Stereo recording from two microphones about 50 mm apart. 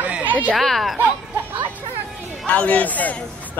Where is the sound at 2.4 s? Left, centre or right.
Left.